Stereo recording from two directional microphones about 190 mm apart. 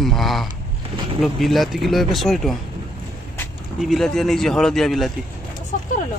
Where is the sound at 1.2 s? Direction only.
Centre (ahead or behind).